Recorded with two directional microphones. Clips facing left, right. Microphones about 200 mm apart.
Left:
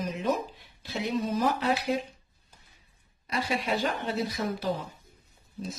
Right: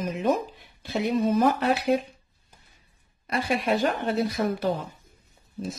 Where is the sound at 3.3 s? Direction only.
55° right (ahead or behind).